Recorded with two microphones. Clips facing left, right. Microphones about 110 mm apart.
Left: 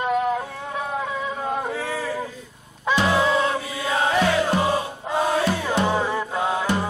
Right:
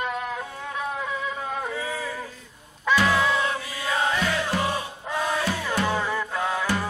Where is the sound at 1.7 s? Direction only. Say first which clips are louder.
Left 4 dB; 70° left (ahead or behind).